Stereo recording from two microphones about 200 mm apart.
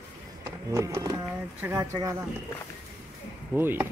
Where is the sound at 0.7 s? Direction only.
15° right (ahead or behind).